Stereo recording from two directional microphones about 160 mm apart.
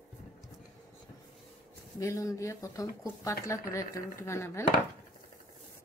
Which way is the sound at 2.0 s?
20° left (ahead or behind).